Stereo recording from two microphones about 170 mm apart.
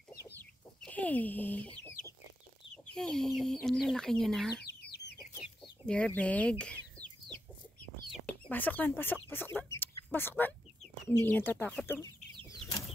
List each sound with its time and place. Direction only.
0.2 s chicken: 10° left (ahead or behind)
2.7 s speech: 5° left (ahead or behind)
4.6 s chicken: 70° left (ahead or behind)
5.9 s speech: 5° left (ahead or behind)
6.6 s chicken: 5° left (ahead or behind)
8.3 s speech: 10° left (ahead or behind)